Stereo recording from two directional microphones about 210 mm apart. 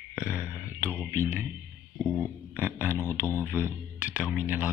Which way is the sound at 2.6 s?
10° right (ahead or behind).